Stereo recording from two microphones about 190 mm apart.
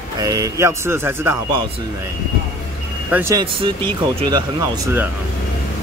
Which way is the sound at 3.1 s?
10° right (ahead or behind).